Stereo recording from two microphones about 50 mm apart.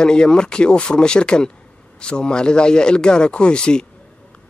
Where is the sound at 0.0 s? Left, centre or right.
Centre.